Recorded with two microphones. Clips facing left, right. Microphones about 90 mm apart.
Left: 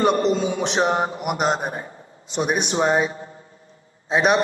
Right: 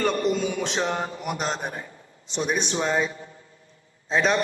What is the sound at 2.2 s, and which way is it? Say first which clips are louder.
Speech: left 4 dB; 50° left (ahead or behind).